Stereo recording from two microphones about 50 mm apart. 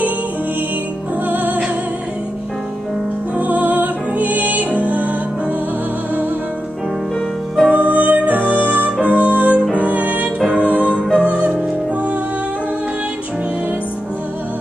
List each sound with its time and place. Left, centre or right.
1.2 s music: right
3.3 s music: right
7.6 s music: right
9.6 s music: right
9.8 s music: right